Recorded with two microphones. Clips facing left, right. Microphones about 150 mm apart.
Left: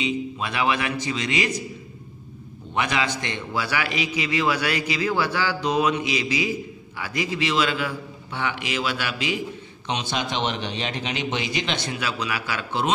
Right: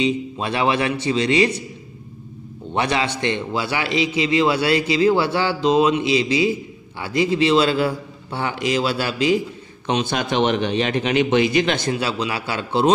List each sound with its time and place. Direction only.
0.0 s a man's voice: 30° right (ahead or behind)
2.7 s a man's voice: 30° right (ahead or behind)
9.8 s a man's voice: 50° right (ahead or behind)
11.9 s a man's voice: 30° right (ahead or behind)